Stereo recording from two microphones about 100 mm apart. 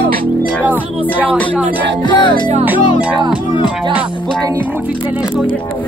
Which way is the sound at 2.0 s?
50° left (ahead or behind).